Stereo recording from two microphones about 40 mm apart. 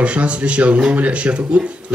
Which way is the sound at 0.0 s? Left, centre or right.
Right.